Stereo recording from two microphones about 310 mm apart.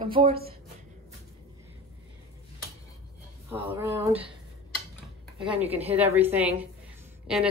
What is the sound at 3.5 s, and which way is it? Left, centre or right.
Speech, centre.